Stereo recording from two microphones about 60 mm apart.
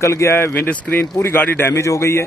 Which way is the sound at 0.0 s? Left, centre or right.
Left.